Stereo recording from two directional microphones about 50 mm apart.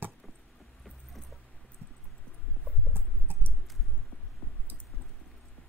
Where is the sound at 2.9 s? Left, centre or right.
Right.